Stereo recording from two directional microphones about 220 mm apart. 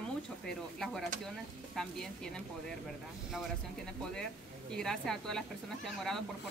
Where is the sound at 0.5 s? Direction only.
Centre (ahead or behind).